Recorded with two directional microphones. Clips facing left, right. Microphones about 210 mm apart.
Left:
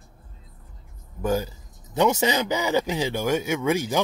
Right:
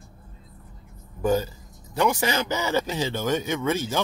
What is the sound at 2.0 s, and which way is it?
Speech, 20° left (ahead or behind).